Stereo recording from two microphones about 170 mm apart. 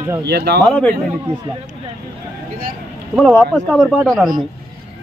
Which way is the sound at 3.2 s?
5° left (ahead or behind).